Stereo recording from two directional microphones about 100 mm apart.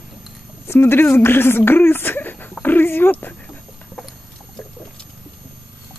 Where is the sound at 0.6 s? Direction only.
20° left (ahead or behind).